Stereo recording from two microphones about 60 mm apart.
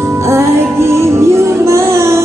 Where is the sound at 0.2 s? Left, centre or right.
Right.